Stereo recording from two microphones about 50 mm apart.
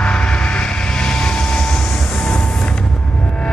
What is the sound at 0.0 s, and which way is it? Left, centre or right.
Vehicle, centre.